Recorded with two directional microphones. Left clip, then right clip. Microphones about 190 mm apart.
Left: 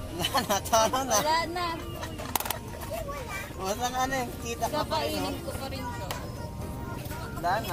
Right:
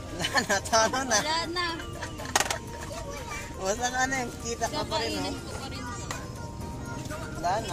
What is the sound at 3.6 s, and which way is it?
Speech, 50° right (ahead or behind).